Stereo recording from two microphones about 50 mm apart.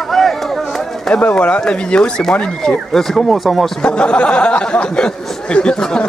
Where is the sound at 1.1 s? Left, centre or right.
Left; by 3.7 s centre.